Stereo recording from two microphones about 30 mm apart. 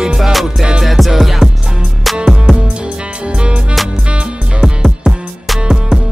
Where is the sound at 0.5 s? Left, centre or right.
Right.